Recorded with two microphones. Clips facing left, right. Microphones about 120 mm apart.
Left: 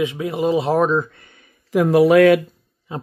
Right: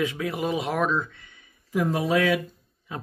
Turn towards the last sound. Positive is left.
turn(degrees=30)  # may be behind; listen again after turning